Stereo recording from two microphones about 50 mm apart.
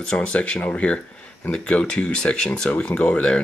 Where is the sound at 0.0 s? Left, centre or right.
Centre.